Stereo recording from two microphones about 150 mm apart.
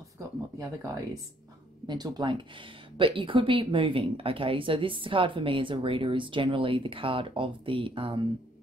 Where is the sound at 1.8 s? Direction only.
30° right (ahead or behind).